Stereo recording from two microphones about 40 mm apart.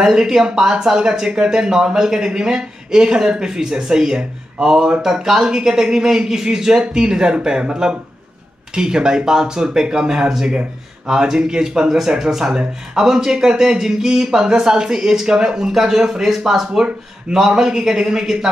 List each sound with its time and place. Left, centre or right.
0.0 s speech: centre